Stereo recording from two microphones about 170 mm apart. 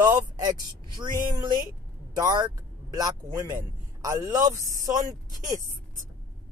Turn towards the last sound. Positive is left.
turn(degrees=-20)  # may be behind; listen again after turning